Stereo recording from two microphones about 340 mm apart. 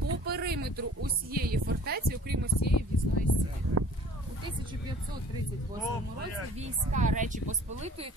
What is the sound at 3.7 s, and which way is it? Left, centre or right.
Speech, right.